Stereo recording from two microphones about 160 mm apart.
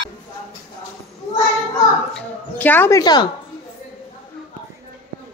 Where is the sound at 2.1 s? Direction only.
10° left (ahead or behind).